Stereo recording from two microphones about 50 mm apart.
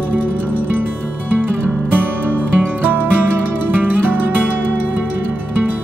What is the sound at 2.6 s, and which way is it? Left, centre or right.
Music, right.